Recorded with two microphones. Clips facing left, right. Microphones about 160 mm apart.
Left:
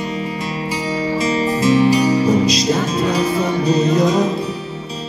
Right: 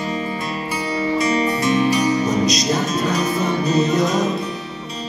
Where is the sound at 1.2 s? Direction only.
25° left (ahead or behind).